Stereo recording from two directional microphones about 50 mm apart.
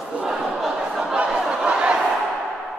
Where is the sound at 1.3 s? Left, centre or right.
Centre.